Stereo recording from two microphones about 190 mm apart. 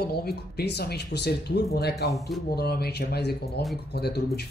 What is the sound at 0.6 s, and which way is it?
Speech, 55° left (ahead or behind).